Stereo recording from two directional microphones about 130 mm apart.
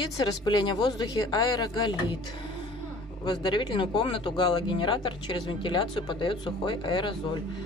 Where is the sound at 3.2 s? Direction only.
35° left (ahead or behind).